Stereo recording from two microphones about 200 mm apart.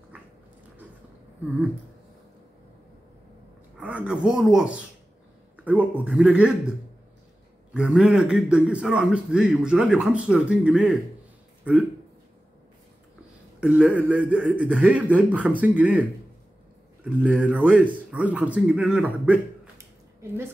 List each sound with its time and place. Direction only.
3.7 s a man's voice: 5° right (ahead or behind)
7.7 s a man's voice: 5° right (ahead or behind)
13.6 s a man's voice: 5° right (ahead or behind)